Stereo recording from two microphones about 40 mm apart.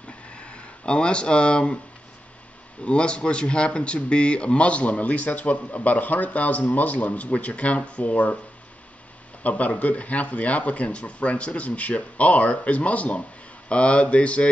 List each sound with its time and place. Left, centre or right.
0.3 s a sound: left
2.8 s speech: left
9.4 s speech: left